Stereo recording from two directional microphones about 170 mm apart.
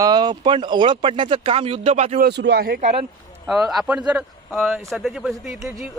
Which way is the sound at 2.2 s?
80° right.